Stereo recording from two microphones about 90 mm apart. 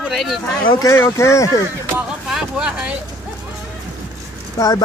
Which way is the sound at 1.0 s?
30° left (ahead or behind).